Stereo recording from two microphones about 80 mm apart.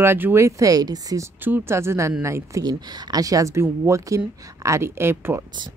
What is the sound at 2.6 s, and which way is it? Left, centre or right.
Speech, right.